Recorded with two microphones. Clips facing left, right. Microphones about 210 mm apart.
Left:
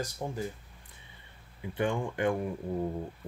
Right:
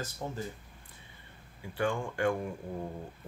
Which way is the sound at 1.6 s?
20° left (ahead or behind).